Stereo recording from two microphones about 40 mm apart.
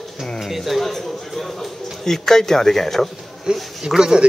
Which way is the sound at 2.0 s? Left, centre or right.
Centre.